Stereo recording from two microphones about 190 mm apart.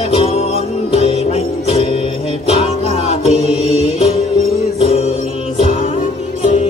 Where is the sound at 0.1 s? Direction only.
35° left (ahead or behind).